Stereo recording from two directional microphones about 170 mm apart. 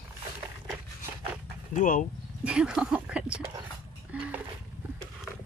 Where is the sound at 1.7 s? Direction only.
50° left (ahead or behind).